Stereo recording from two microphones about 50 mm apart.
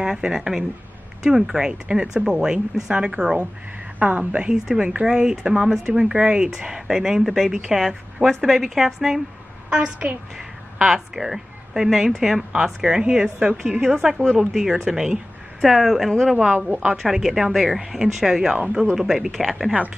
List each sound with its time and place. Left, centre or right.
0.0 s a woman's voice: centre
9.7 s a woman's voice: centre
16.8 s a woman's voice: centre